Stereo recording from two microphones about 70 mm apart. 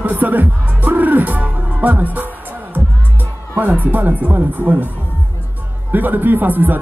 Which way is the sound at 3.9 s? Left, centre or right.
Right.